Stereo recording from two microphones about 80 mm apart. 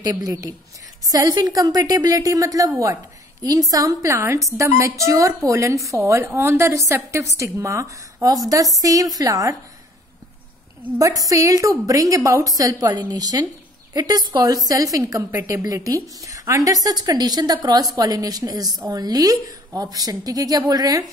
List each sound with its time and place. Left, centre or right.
0.0 s a woman's voice: right
3.7 s a woman's voice: right
11.0 s a woman's voice: right